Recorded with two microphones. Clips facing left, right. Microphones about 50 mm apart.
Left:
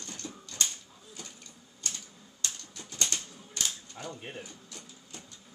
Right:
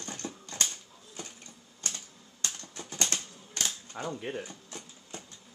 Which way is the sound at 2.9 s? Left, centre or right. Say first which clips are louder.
Right 1 dB; right.